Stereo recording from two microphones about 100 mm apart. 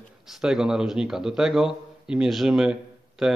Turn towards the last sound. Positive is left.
turn(degrees=-5)  # may be behind; listen again after turning